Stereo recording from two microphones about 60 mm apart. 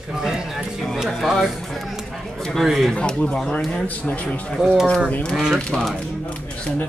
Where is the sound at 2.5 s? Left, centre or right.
Centre.